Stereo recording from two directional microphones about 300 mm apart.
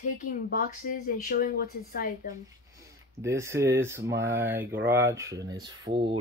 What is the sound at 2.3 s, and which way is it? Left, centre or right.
Speech, centre.